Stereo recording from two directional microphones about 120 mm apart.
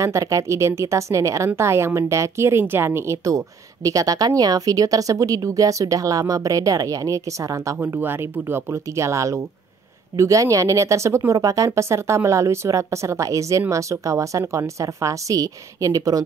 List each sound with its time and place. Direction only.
0.0 s a woman's voice: 25° right (ahead or behind)